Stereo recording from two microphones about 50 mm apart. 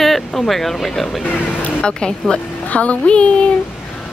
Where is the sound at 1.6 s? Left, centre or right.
Left.